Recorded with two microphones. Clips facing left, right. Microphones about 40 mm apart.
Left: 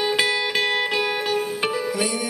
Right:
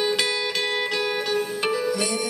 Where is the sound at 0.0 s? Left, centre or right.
Centre.